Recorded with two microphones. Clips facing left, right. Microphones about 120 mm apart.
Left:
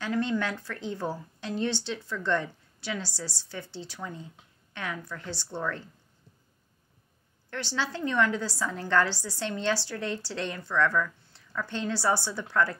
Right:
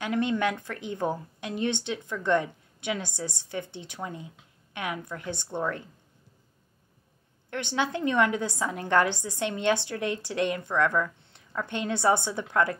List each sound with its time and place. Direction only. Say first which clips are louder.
0.0 s a woman's voice: right 2 dB; 20° right (ahead or behind)
7.5 s a woman's voice: right 4 dB; 20° right (ahead or behind)